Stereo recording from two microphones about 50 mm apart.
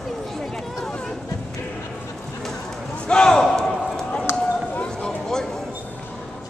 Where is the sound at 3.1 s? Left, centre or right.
Centre.